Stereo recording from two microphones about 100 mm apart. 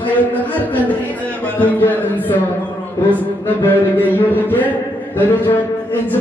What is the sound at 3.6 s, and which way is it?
A man's voice, 20° left (ahead or behind).